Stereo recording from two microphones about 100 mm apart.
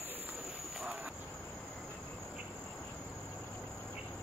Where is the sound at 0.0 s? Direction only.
20° right (ahead or behind).